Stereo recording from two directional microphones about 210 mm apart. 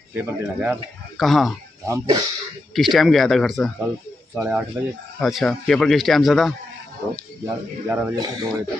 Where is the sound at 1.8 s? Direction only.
15° right (ahead or behind).